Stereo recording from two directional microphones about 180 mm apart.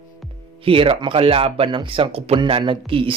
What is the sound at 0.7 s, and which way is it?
Speech, 30° right (ahead or behind).